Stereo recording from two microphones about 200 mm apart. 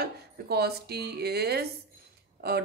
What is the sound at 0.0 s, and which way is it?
A woman's voice, 50° right (ahead or behind).